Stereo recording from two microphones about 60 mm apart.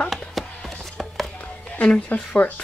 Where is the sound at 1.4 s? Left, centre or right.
Left.